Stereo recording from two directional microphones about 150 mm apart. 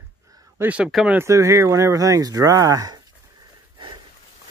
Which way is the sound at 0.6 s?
10° right (ahead or behind).